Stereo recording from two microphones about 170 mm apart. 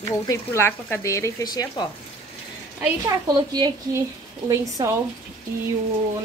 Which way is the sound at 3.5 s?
20° right (ahead or behind).